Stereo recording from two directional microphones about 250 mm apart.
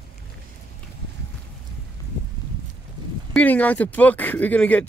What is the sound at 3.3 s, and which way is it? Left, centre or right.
Speech, centre.